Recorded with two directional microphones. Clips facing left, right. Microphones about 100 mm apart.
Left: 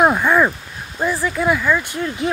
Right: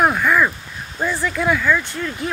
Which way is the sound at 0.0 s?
20° left (ahead or behind).